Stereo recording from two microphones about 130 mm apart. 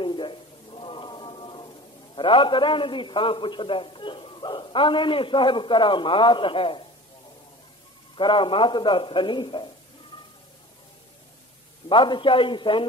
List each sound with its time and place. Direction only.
0.0 s a man's voice: 40° left (ahead or behind)
8.2 s a man's voice: 40° left (ahead or behind)
11.9 s a man's voice: 40° left (ahead or behind)